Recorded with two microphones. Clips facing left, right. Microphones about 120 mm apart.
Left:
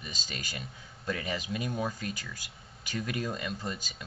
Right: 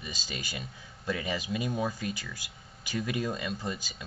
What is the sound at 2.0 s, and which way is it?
Speech, 45° left (ahead or behind).